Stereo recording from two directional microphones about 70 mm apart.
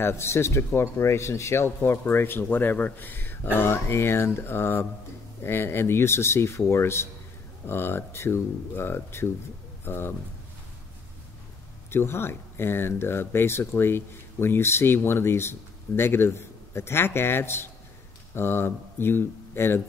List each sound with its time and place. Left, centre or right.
0.0 s speech: left
11.9 s speech: left